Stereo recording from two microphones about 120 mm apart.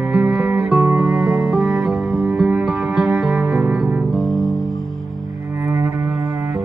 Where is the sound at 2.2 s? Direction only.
5° right (ahead or behind).